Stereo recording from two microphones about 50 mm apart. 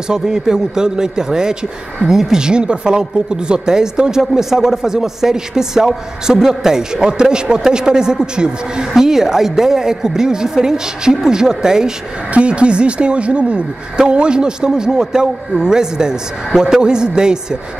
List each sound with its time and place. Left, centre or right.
0.1 s speech: centre